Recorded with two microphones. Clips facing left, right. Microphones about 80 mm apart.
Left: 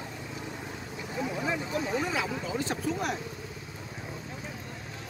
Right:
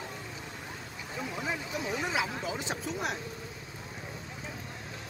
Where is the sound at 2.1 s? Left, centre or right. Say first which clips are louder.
Left 1 dB; centre.